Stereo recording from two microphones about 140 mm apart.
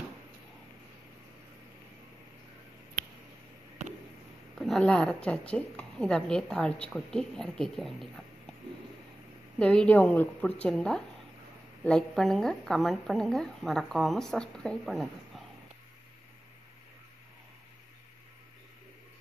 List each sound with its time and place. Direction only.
4.6 s speech: 5° left (ahead or behind)
9.6 s a woman's voice: 5° left (ahead or behind)